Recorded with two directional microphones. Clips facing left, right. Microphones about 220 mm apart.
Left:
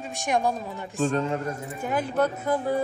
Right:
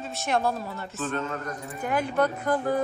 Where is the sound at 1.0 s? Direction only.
35° left (ahead or behind).